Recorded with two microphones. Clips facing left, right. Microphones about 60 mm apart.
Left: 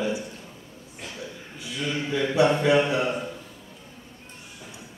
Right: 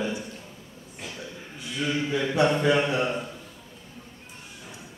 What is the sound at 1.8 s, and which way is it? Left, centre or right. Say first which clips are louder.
Speech: right 1 dB; centre.